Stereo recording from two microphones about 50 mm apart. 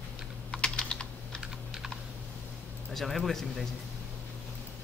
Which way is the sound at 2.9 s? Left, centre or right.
Centre.